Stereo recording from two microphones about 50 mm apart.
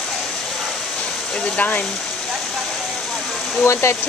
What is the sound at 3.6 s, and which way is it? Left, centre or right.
Speech, left.